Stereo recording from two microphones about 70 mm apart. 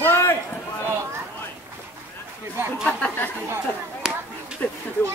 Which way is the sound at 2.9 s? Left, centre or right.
Left.